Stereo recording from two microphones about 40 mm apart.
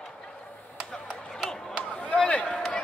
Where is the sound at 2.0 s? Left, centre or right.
Left.